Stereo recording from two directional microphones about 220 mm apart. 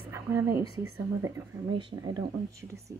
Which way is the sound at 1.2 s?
20° right (ahead or behind).